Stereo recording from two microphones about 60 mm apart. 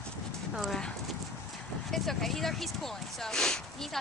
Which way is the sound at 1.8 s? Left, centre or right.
Centre.